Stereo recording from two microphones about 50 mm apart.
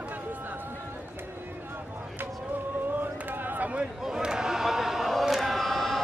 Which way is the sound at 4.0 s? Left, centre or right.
Centre.